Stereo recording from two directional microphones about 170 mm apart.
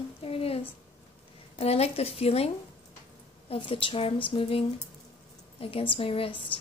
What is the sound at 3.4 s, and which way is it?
A woman's voice, 35° left (ahead or behind).